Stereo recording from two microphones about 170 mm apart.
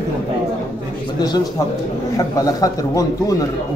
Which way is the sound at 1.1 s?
25° left (ahead or behind).